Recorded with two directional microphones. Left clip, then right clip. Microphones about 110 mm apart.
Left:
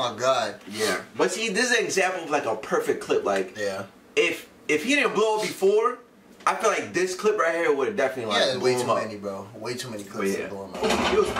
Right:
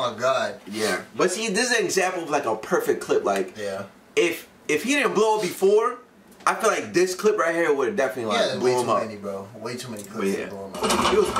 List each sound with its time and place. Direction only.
0.0 s speech: 10° left (ahead or behind)
1.1 s speech: 10° right (ahead or behind)
8.3 s speech: 10° left (ahead or behind)
10.1 s speech: 15° right (ahead or behind)